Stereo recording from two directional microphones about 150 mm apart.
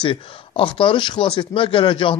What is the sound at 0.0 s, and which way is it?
Speech, 35° left (ahead or behind).